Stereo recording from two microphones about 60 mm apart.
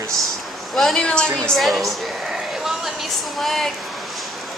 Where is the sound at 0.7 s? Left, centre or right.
Centre.